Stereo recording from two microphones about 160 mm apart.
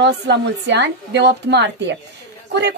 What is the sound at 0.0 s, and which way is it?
Speech, 90° right.